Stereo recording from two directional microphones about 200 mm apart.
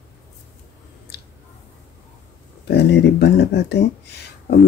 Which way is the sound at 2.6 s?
55° left (ahead or behind).